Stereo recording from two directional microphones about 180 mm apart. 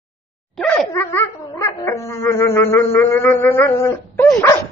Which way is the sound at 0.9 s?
15° left (ahead or behind).